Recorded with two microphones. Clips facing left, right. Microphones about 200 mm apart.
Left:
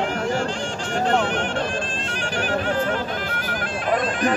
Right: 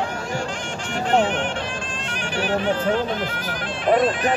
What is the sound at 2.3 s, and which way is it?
Speech, 40° left (ahead or behind).